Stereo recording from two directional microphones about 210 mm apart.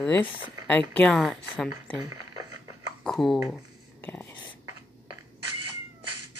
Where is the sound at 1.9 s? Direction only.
15° right (ahead or behind).